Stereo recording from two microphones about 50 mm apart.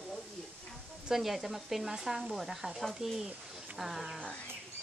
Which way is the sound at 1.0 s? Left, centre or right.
Centre.